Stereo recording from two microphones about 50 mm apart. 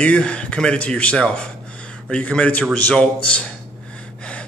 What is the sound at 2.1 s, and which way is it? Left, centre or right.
A man's voice, left.